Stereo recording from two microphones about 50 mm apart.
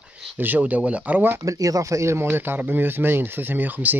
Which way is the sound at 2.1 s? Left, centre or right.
Right.